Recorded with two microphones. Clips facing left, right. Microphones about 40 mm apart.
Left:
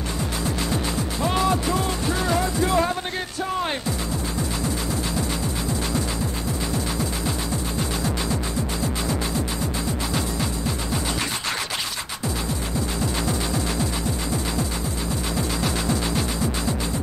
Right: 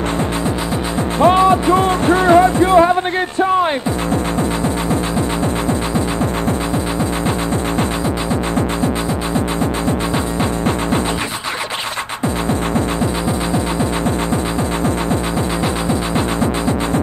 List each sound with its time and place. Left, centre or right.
1.2 s music: right